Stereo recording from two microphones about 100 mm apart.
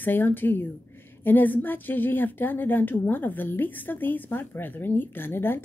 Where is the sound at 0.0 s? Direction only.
20° left (ahead or behind).